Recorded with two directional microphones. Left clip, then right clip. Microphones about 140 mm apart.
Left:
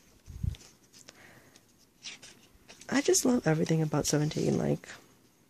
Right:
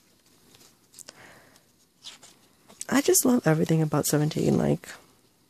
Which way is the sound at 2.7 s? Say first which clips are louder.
Right 4 dB; 35° right (ahead or behind).